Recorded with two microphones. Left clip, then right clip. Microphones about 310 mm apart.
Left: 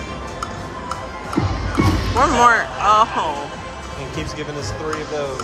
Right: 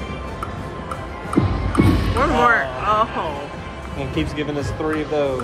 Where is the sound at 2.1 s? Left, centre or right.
Centre.